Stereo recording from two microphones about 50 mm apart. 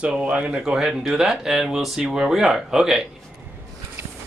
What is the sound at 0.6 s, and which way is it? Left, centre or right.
Speech, centre.